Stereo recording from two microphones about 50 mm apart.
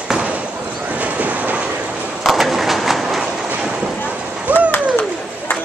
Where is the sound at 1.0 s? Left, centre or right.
Right.